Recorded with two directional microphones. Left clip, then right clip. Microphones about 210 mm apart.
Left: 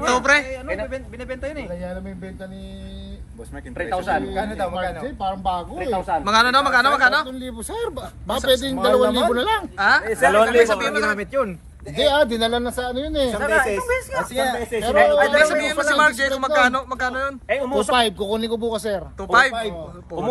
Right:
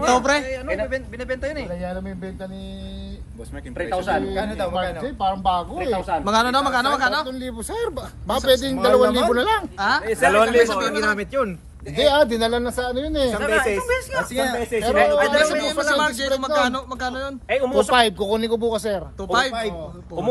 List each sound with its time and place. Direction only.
0.0 s a man's voice: 10° right (ahead or behind)
3.7 s a man's voice: centre (ahead or behind)
13.4 s speech: 15° left (ahead or behind)
13.7 s a man's voice: centre (ahead or behind)
14.3 s speech: 30° left (ahead or behind)
14.7 s a man's voice: centre (ahead or behind)